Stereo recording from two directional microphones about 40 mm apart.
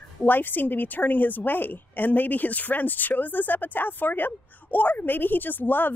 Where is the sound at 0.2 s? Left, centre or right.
Left.